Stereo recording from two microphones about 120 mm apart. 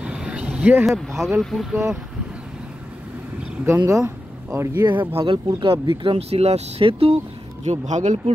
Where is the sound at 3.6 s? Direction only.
25° right (ahead or behind).